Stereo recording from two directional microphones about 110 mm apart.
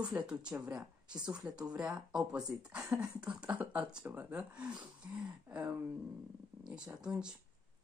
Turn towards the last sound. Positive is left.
turn(degrees=-5)  # may be behind; listen again after turning